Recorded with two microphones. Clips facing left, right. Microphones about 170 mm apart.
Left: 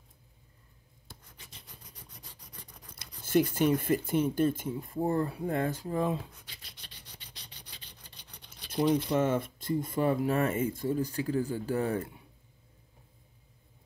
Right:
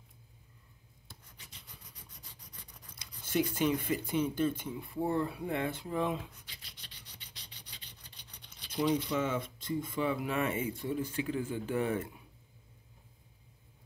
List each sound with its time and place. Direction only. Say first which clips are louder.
3.0 s a sound: left 6 dB; 50° left (ahead or behind)
3.9 s speech: left 4 dB; 50° left (ahead or behind)
8.6 s speech: left 4 dB; 50° left (ahead or behind)